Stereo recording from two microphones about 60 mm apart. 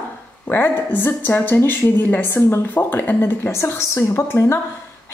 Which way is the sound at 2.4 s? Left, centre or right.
Left.